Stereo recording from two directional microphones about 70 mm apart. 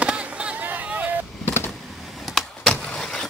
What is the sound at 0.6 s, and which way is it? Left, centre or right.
Hubbub, right.